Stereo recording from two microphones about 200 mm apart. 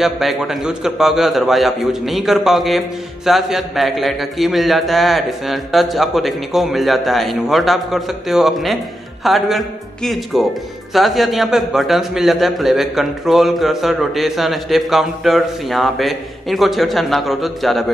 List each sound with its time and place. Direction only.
0.0 s a man's voice: centre (ahead or behind)